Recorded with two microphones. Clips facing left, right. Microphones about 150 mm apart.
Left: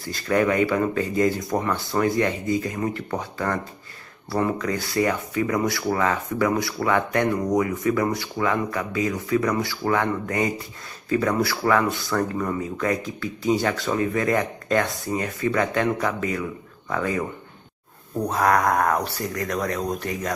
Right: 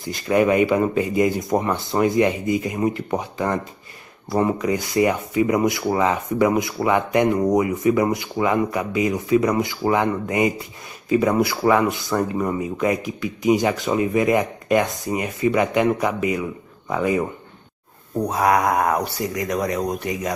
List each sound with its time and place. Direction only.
0.0 s speech: 20° right (ahead or behind)